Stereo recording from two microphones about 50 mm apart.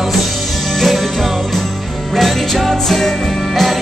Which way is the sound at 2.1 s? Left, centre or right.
Centre.